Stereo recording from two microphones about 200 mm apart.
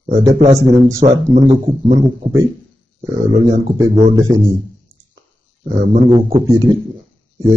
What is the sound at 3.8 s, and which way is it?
Speech, 15° right (ahead or behind).